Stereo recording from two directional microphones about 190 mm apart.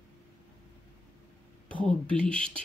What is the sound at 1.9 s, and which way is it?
Speech, 5° left (ahead or behind).